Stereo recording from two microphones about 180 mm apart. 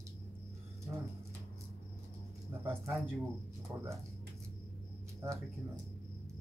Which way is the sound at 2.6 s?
15° right (ahead or behind).